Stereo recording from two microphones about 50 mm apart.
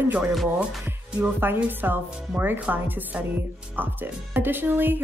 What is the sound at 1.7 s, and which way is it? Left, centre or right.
Speech, right.